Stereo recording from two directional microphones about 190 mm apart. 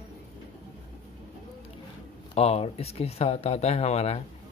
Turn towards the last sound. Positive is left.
turn(degrees=35)  # may be behind; listen again after turning